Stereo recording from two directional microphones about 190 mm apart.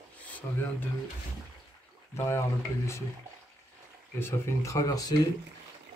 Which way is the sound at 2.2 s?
15° left (ahead or behind).